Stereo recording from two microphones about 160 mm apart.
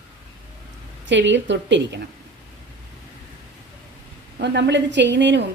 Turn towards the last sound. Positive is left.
turn(degrees=-90)